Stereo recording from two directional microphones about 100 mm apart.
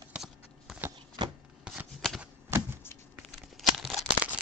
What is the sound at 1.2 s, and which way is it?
Chopping, 50° right (ahead or behind).